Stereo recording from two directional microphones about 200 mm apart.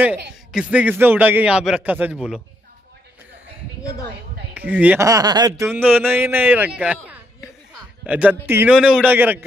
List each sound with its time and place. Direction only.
0.5 s a man's voice: 5° right (ahead or behind)
4.6 s a man's voice: 10° right (ahead or behind)
5.7 s a man's voice: 10° right (ahead or behind)